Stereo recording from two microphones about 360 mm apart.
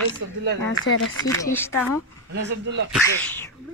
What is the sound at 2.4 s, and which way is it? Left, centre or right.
Speech, right.